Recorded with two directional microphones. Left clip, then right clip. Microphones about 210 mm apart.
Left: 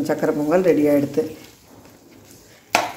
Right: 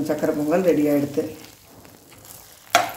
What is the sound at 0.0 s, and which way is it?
Speech, 15° left (ahead or behind).